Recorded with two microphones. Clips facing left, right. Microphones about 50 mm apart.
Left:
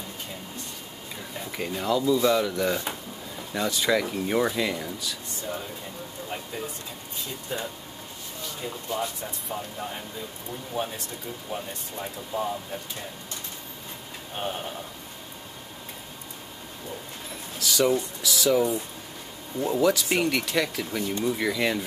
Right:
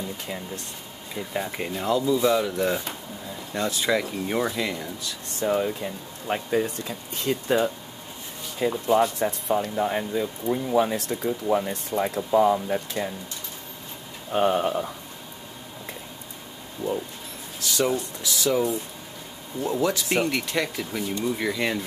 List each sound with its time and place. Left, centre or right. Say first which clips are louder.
1.3 s speech: right 9 dB; right
1.7 s speech: even; centre
5.4 s speech: right 12 dB; right
6.2 s speech: right 11 dB; right
14.3 s speech: right 11 dB; right
17.6 s speech: left 1 dB; centre
19.6 s speech: left 2 dB; centre